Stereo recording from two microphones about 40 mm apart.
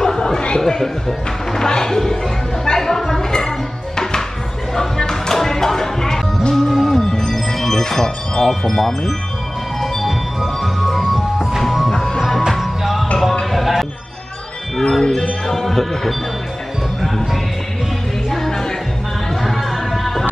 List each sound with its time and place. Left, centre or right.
0.0 s chatter: centre
0.6 s speech: centre
2.6 s music: centre
6.5 s music: centre
7.1 s music: centre
11.9 s music: centre
12.2 s music: centre
13.5 s a sound: centre
14.8 s speech: centre
18.3 s music: centre